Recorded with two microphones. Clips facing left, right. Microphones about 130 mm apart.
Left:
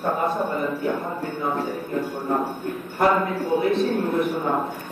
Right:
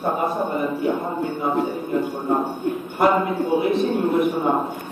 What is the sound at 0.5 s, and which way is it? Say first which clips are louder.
Speech: right 2 dB; 15° right (ahead or behind).